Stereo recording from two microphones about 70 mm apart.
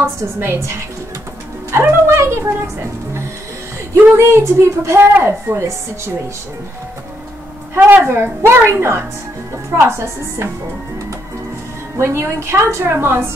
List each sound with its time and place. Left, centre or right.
0.0 s a woman's voice: right
1.7 s a woman's voice: right
7.7 s a woman's voice: right
12.0 s a woman's voice: right